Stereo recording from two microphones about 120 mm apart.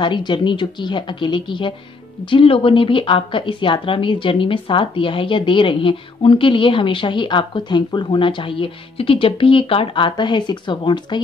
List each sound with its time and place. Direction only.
0.0 s a woman's voice: 40° left (ahead or behind)